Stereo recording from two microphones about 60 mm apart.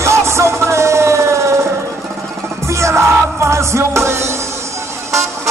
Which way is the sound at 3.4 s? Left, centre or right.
Right.